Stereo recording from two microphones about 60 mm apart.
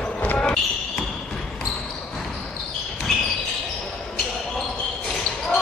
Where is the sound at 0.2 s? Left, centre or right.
Left.